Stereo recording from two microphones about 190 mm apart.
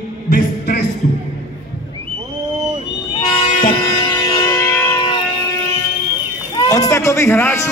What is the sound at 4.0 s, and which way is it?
Music, 20° left (ahead or behind).